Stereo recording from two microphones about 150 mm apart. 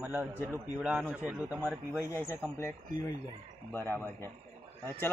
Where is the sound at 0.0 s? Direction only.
10° right (ahead or behind).